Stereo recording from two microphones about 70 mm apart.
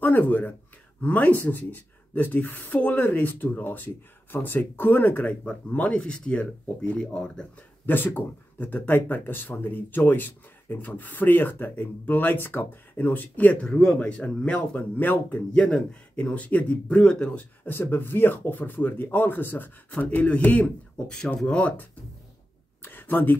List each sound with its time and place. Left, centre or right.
0.0 s speech: left
7.8 s speech: left
15.5 s speech: centre
22.8 s a sound: left